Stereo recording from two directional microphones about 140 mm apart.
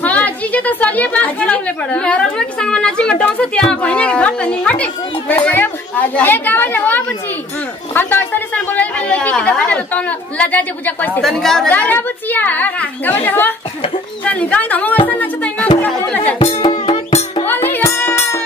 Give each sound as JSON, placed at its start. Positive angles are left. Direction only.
{"t": 0.0, "sound": "speech", "side_deg": 10}
{"t": 15.0, "sound": "music", "side_deg": 10}
{"t": 15.8, "sound": "chatter", "side_deg": 10}
{"t": 16.3, "sound": "music", "side_deg": 45}
{"t": 17.6, "sound": "music", "side_deg": 15}